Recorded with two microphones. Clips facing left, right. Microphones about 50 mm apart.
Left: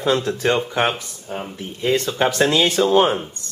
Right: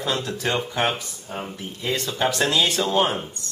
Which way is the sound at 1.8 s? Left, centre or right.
Left.